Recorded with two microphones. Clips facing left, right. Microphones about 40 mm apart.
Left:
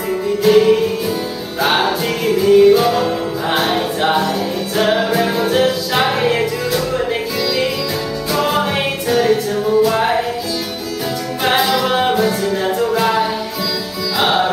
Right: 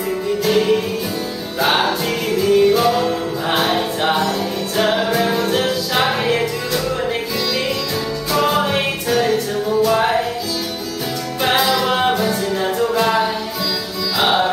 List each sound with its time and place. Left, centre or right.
0.4 s music: centre
8.3 s music: centre
11.4 s music: centre